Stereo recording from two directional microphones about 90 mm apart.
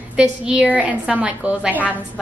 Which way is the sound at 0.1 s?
10° right (ahead or behind).